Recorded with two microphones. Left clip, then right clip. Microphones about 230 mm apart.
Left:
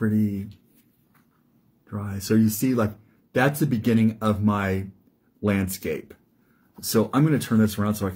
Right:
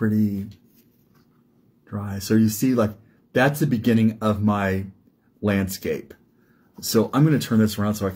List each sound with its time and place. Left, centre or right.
0.0 s speech: centre
1.9 s speech: centre